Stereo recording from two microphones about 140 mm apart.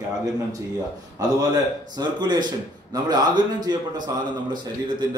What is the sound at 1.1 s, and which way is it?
A man's voice, 30° right (ahead or behind).